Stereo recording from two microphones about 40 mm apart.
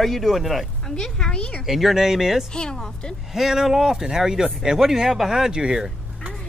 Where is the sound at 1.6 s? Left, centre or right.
Centre.